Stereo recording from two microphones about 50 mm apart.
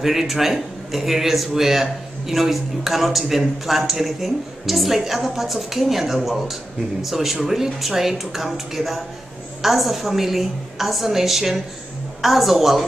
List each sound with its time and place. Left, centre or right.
0.0 s a man's voice: centre